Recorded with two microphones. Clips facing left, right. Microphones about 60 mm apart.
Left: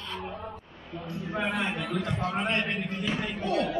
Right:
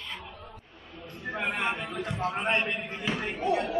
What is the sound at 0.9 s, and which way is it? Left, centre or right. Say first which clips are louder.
Speech: left 7 dB; left.